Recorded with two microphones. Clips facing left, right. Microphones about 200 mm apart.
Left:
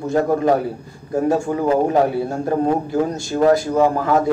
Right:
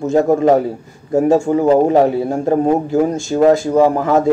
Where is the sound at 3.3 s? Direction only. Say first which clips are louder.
Right 3 dB; 25° right (ahead or behind).